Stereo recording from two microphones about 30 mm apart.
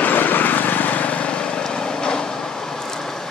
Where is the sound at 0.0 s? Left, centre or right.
Left.